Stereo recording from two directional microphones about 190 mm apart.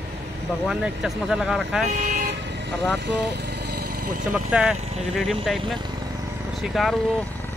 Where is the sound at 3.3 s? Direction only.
60° right (ahead or behind).